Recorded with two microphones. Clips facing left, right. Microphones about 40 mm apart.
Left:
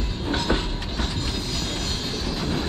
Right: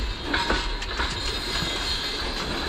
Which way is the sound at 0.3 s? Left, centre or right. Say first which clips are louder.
Even; centre.